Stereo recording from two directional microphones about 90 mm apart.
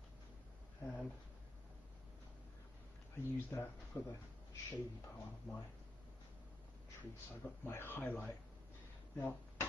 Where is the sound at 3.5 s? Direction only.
35° left (ahead or behind).